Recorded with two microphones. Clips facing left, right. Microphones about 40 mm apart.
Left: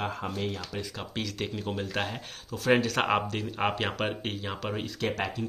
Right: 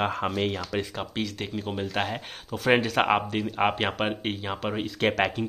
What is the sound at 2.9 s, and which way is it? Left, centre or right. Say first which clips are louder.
Speech: right 4 dB; centre.